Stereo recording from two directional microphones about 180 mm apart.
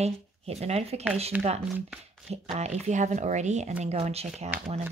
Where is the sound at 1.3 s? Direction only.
5° right (ahead or behind).